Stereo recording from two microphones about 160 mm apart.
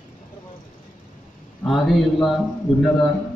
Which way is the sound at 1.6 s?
Centre (ahead or behind).